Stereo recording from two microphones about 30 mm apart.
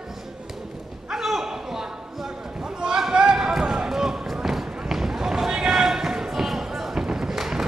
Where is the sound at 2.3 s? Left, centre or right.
Right.